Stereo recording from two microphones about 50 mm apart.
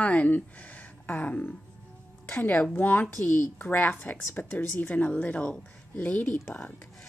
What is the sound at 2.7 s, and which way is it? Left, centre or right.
A woman's voice, left.